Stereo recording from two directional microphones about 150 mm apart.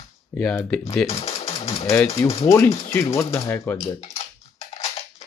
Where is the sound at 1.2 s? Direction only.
40° left (ahead or behind).